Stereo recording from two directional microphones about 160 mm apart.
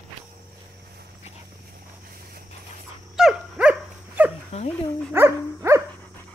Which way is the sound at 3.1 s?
5° right (ahead or behind).